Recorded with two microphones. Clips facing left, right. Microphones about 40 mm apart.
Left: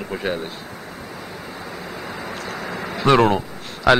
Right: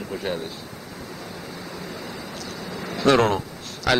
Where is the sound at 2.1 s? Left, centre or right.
Left.